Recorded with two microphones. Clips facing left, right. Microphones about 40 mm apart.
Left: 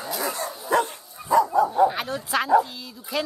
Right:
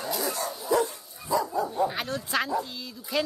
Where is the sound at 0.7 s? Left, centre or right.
Left.